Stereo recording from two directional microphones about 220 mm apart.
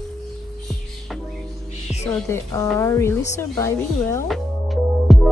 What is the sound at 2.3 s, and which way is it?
Speech, 10° left (ahead or behind).